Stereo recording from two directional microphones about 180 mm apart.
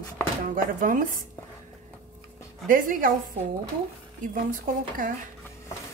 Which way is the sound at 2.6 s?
50° right (ahead or behind).